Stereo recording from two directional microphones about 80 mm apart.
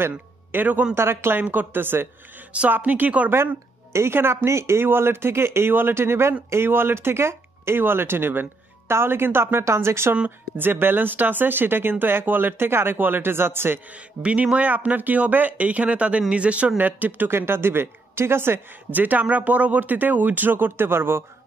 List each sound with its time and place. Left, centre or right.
0.1 s a man's voice: right
3.3 s speech: right
10.1 s speech: right
13.9 s speech: centre